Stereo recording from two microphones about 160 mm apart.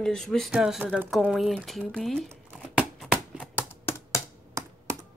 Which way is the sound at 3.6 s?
15° left (ahead or behind).